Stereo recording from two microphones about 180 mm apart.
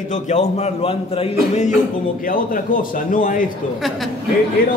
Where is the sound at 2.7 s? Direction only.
45° left (ahead or behind).